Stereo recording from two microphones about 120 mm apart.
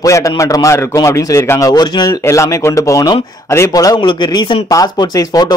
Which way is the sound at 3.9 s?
40° left (ahead or behind).